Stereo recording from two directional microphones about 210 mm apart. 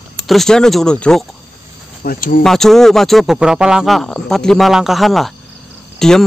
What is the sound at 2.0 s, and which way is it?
Speech, 40° left (ahead or behind).